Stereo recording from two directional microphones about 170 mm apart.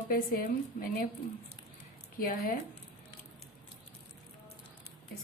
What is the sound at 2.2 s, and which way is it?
Speech, 60° left (ahead or behind).